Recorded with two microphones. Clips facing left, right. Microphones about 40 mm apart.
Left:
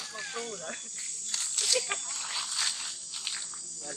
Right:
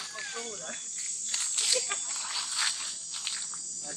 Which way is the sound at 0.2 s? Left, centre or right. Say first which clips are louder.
Left 3 dB; centre.